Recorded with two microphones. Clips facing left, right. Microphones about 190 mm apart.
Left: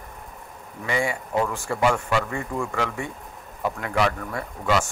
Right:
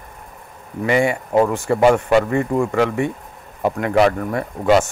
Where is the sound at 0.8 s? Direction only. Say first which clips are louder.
Right 8 dB; 65° right (ahead or behind).